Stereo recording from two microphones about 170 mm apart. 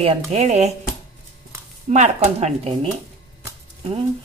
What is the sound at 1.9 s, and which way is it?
A woman's voice, 40° right (ahead or behind).